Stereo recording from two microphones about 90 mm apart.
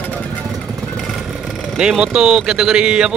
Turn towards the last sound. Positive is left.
turn(degrees=-10)  # may be behind; listen again after turning